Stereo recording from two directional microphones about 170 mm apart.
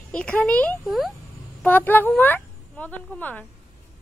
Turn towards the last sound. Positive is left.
turn(degrees=10)  # may be behind; listen again after turning